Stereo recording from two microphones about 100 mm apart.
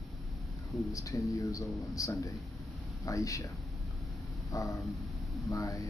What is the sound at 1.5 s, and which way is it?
Speech, 35° left (ahead or behind).